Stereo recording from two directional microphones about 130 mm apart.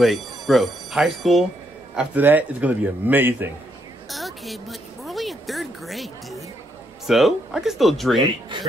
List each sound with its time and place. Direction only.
0.0 s speech: centre (ahead or behind)
2.0 s a man's voice: 15° right (ahead or behind)
4.1 s a sound: centre (ahead or behind)
7.1 s speech: centre (ahead or behind)
8.2 s speech: 35° right (ahead or behind)